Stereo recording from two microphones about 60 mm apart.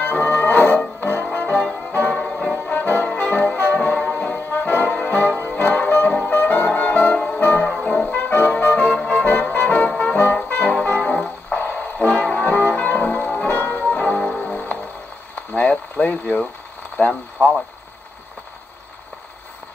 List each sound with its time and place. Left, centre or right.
0.0 s music: left
2.2 s brass instrument: centre
4.0 s music: centre
8.9 s brass instrument: centre
11.6 s music: left
12.1 s music: left
15.5 s boiling: left
16.9 s a sound: left